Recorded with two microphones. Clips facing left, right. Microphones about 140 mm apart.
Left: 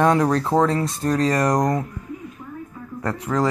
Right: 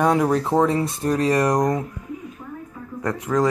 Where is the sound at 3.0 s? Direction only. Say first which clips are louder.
Right 2 dB; 15° right (ahead or behind).